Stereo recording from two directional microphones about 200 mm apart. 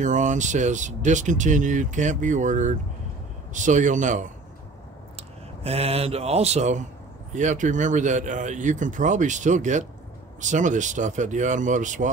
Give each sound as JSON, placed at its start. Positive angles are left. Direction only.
{"t": 0.0, "sound": "speech", "side_deg": -40}